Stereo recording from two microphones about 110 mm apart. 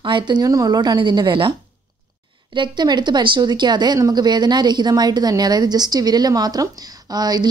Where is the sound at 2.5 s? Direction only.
40° right (ahead or behind).